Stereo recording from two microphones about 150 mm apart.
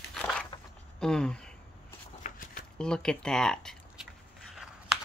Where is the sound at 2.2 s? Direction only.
65° left (ahead or behind).